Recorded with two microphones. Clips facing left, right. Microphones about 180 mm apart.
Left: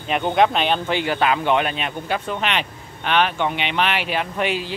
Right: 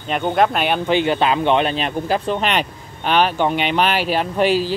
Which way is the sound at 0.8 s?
20° right (ahead or behind).